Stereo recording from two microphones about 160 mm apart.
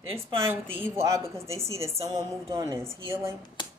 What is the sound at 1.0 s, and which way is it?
A woman's voice, 15° right (ahead or behind).